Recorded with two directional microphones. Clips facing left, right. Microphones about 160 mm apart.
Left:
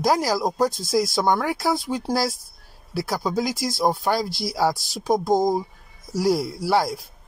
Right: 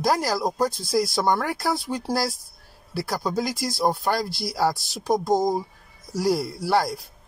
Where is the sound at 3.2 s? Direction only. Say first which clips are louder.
Left 1 dB; centre (ahead or behind).